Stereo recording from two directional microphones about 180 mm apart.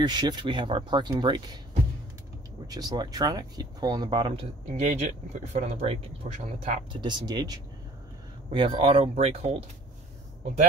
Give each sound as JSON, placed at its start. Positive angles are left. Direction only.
{"t": 0.0, "sound": "speech", "side_deg": -25}
{"t": 2.7, "sound": "speech", "side_deg": -20}
{"t": 6.9, "sound": "speech", "side_deg": -25}